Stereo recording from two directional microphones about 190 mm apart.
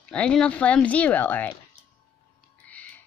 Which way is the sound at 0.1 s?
5° left (ahead or behind).